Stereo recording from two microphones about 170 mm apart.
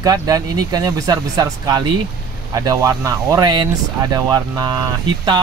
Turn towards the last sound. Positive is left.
turn(degrees=-25)  # may be behind; listen again after turning